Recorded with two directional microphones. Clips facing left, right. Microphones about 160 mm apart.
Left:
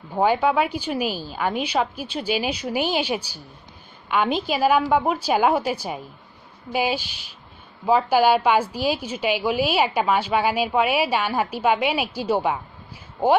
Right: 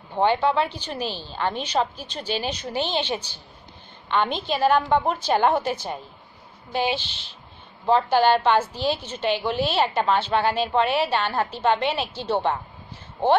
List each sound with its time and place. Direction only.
0.1 s a woman's voice: 10° left (ahead or behind)